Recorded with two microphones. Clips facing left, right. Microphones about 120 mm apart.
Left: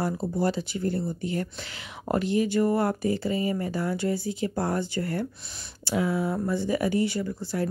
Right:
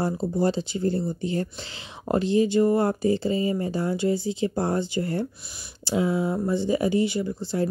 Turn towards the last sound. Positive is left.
turn(degrees=-25)  # may be behind; listen again after turning